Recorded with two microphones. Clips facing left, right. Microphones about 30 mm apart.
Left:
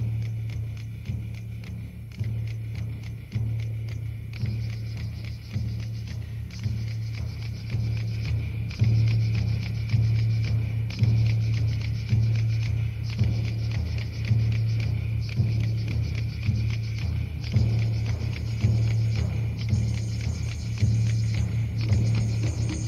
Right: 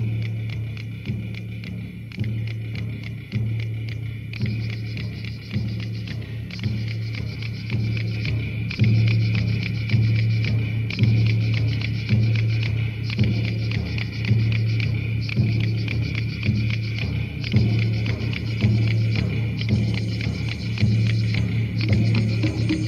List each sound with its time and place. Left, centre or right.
7.7 s music: right